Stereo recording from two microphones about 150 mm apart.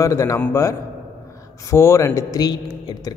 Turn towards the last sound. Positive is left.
turn(degrees=25)  # may be behind; listen again after turning